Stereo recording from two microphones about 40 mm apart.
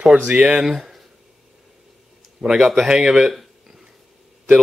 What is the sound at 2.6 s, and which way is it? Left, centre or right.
Speech, centre.